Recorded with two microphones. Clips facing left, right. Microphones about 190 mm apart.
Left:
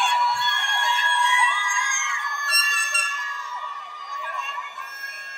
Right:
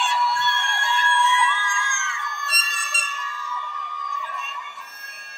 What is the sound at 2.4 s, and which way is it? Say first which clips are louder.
Emergency vehicle: even; 55° left (ahead or behind).